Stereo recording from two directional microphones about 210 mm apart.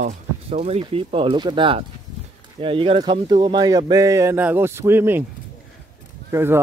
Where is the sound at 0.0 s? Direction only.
30° right (ahead or behind); by 5.2 s 10° right (ahead or behind).